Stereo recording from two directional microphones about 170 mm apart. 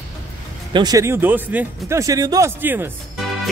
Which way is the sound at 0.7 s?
25° right (ahead or behind).